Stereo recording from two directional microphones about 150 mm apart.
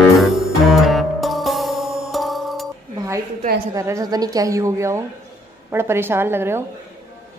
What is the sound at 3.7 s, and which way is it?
A woman's voice, 20° right (ahead or behind).